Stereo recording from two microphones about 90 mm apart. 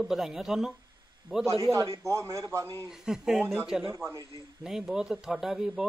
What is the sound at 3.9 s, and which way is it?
Speech, 30° right (ahead or behind).